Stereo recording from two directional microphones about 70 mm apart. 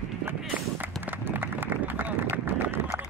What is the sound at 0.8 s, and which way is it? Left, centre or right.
Run, right.